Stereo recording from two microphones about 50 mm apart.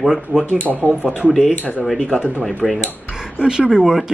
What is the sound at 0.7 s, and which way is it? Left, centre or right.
Speech, right.